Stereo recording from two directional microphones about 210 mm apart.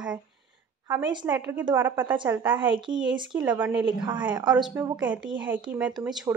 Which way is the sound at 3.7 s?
20° right (ahead or behind).